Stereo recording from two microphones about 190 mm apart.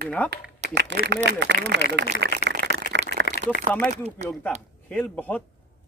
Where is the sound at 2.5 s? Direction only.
65° right (ahead or behind).